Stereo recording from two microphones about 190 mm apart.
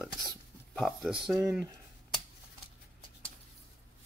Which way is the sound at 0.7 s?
Centre (ahead or behind).